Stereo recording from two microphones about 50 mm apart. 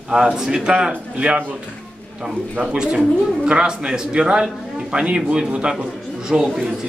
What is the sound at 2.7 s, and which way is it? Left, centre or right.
A man's voice, centre.